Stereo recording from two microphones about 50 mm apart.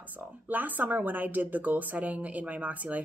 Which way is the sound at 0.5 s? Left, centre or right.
Right.